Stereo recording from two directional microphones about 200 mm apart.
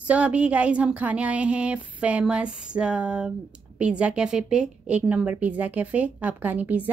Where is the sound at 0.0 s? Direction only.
5° right (ahead or behind).